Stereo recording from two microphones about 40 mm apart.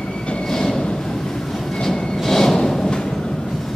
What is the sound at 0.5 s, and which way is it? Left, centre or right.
Train, centre.